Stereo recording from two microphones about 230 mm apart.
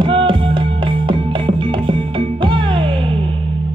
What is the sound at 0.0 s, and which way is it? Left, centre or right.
Music, right.